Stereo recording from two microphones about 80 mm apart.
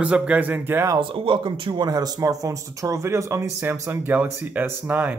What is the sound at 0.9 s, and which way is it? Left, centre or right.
Speech, right.